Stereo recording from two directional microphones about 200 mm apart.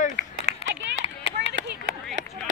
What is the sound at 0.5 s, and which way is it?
Run, 65° right (ahead or behind).